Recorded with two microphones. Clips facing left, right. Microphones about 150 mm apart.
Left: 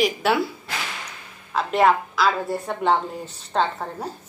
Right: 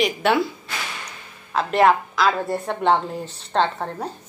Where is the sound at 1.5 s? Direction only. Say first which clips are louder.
Right 1 dB; centre (ahead or behind).